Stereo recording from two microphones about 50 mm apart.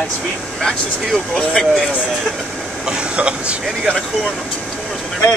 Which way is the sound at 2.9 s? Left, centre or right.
Right.